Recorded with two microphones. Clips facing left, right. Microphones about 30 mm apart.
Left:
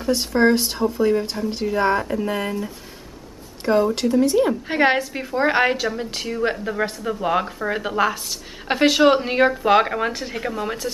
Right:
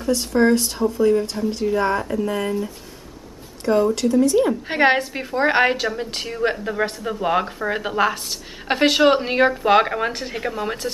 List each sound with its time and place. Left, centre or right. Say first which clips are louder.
0.0 s speech: even; centre
4.6 s a woman's voice: right 1 dB; centre